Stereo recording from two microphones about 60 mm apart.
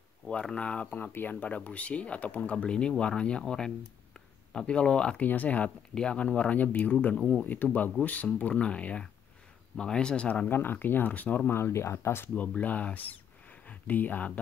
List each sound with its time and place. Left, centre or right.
0.3 s speech: centre
5.2 s speech: left
10.5 s speech: left
11.5 s speech: left
12.4 s speech: left